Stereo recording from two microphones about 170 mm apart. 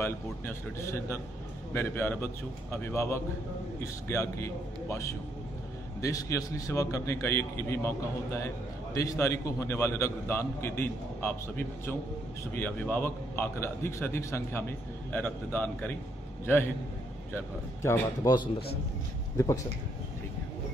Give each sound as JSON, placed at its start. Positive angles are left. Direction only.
{"t": 0.0, "sound": "a man's voice", "side_deg": 15}
{"t": 8.9, "sound": "a man's voice", "side_deg": 20}
{"t": 17.8, "sound": "speech", "side_deg": 20}